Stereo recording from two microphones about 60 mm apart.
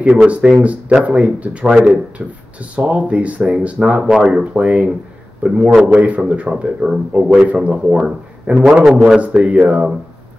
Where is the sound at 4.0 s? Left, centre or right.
Centre.